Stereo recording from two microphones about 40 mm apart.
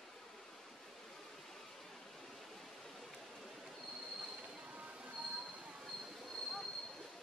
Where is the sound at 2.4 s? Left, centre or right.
Centre.